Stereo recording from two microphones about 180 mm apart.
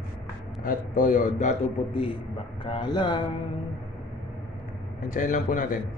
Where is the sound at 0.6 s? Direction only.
50° left (ahead or behind); by 3.1 s 25° left (ahead or behind).